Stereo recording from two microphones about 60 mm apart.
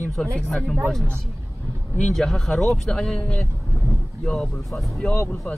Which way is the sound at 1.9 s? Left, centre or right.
Centre.